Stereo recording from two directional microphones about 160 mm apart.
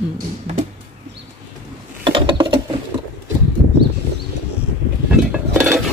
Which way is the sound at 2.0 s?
30° right (ahead or behind).